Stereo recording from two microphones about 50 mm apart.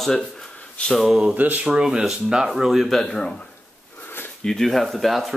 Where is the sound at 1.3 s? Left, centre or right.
Right.